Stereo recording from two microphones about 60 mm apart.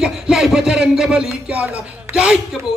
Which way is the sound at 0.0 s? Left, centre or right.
Centre.